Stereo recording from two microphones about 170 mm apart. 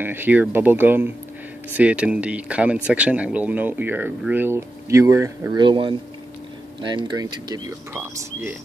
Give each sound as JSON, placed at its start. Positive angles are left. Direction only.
{"t": 0.0, "sound": "speech", "side_deg": -10}
{"t": 7.9, "sound": "speech", "side_deg": -10}